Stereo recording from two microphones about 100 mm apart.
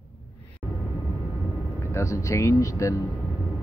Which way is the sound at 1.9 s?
30° left (ahead or behind).